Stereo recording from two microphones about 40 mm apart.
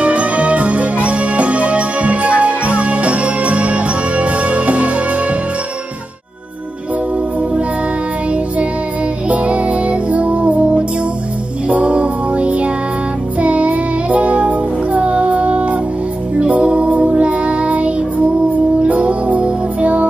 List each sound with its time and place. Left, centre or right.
0.0 s music: right
9.3 s music: right